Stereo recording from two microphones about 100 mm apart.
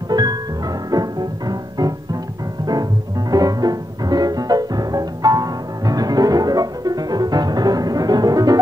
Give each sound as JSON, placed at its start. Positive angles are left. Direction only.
{"t": 0.1, "sound": "music", "side_deg": -40}